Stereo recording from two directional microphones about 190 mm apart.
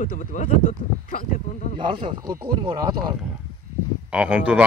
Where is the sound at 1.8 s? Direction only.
25° right (ahead or behind).